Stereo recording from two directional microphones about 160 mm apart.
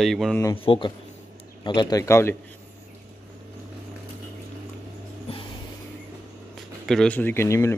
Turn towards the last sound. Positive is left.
turn(degrees=15)  # may be behind; listen again after turning